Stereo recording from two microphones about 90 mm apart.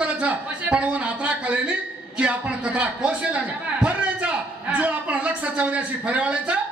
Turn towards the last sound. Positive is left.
turn(degrees=-15)  # may be behind; listen again after turning